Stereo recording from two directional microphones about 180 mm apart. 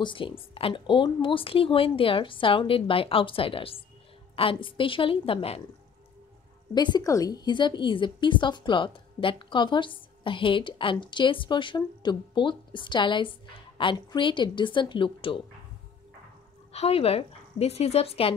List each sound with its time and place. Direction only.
0.0 s a woman's voice: 25° left (ahead or behind)
6.7 s a woman's voice: 25° left (ahead or behind)
16.7 s speech: 35° left (ahead or behind)